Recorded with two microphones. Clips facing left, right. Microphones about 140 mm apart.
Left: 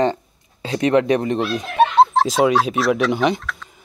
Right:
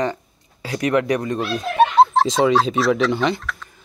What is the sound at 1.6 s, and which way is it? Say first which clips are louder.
Speech: right 1 dB; centre (ahead or behind).